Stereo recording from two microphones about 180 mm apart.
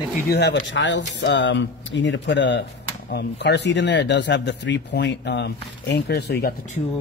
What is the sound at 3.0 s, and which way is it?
Speech, 65° left (ahead or behind).